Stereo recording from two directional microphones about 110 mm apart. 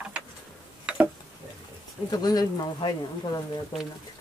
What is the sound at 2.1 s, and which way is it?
Speech, 35° left (ahead or behind).